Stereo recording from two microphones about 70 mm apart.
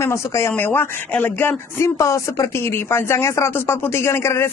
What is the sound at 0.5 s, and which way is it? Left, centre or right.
Speech, left.